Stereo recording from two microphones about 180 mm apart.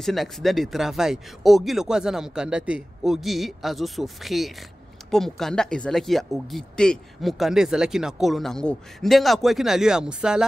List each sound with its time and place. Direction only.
0.0 s speech: centre (ahead or behind)